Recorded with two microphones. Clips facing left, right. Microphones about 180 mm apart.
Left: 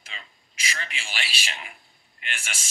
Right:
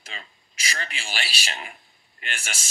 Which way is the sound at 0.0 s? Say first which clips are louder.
Right 3 dB; 40° right (ahead or behind).